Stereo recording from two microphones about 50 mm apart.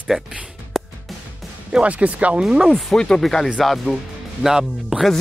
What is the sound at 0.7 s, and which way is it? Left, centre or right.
Music, centre.